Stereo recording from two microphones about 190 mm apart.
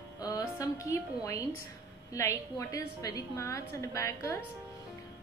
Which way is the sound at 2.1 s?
15° left (ahead or behind).